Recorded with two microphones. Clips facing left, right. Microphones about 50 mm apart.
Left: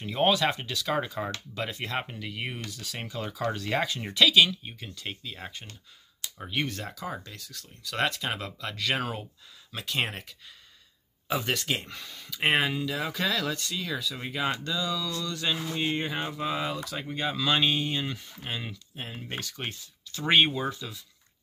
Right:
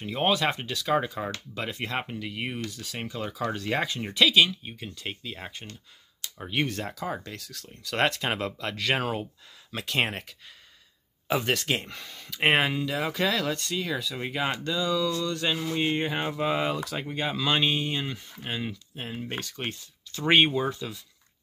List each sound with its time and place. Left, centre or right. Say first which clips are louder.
0.0 s speech: left 1 dB; centre
0.3 s speech: even; right
2.7 s speech: right 1 dB; right
6.5 s speech: right 3 dB; right
7.2 s speech: right 4 dB; right
8.3 s speech: right 4 dB; right
11.2 s speech: right 3 dB; right; by 19.4 s centre
19.4 s speech: right 2 dB; right
20.4 s speech: right 3 dB; centre
20.7 s speech: right 3 dB; right